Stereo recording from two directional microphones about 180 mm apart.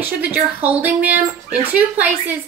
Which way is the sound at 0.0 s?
10° right (ahead or behind).